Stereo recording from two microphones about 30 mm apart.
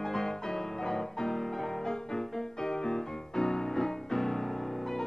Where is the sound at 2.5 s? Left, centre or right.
Left.